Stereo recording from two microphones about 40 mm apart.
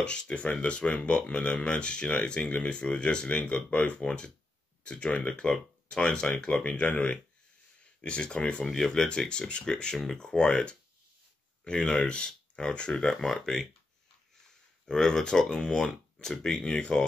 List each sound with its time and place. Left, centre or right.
0.0 s speech: left
8.6 s speech: centre
9.3 s speech: left
13.2 s speech: centre
14.9 s speech: centre